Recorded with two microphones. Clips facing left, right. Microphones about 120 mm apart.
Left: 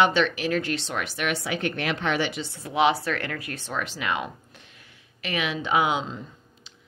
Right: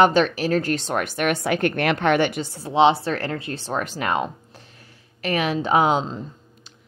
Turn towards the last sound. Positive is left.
turn(degrees=-35)  # may be behind; listen again after turning